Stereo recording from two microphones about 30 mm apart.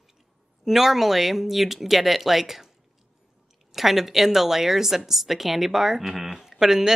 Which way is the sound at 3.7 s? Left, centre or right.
Centre.